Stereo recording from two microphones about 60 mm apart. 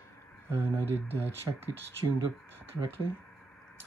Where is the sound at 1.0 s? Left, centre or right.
Right.